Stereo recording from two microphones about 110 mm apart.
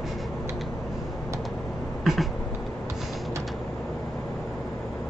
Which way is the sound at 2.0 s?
Centre (ahead or behind).